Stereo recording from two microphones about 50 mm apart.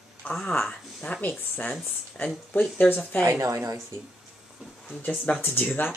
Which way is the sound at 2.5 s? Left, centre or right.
Left.